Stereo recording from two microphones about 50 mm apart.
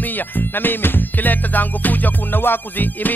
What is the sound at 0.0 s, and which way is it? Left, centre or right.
Music, left.